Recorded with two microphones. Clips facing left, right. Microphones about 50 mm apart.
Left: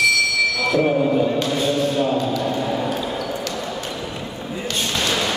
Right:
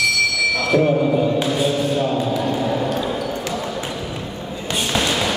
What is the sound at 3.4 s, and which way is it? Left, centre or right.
Basketball bounce, centre.